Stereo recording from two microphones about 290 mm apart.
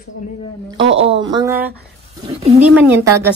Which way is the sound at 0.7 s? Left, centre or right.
Centre.